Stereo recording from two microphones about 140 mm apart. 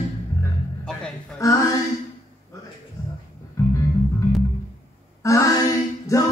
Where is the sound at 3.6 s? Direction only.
20° left (ahead or behind).